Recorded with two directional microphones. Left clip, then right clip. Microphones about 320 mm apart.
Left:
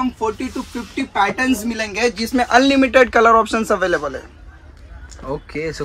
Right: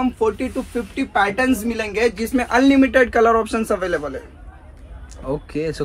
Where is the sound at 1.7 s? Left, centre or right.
Centre; by 4.1 s left.